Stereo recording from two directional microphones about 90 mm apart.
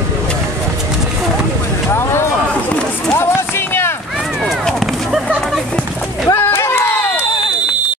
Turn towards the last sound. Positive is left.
turn(degrees=25)  # may be behind; listen again after turning